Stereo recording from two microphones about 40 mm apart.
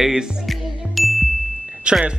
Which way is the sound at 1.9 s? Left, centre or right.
Right.